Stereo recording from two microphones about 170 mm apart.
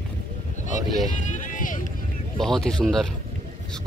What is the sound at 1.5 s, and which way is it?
Vehicle, 50° left (ahead or behind).